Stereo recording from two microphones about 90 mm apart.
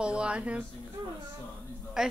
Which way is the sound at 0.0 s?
10° right (ahead or behind).